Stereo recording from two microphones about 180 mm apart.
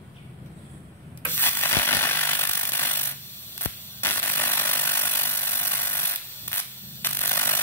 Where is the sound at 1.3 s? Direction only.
10° left (ahead or behind).